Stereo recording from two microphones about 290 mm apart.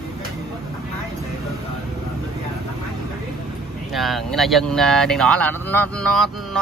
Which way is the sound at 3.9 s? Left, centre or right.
Centre.